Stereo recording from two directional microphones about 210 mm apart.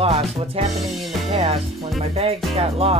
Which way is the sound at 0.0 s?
30° right (ahead or behind).